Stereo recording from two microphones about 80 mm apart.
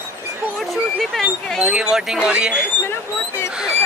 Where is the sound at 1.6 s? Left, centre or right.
Centre.